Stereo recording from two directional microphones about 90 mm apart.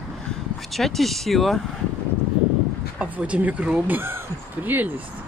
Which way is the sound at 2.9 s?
15° right (ahead or behind).